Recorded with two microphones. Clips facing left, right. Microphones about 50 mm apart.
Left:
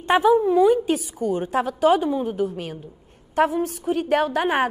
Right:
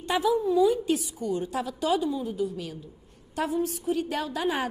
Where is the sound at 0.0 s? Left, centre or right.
Left.